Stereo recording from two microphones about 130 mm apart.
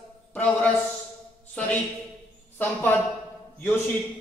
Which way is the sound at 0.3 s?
10° left (ahead or behind).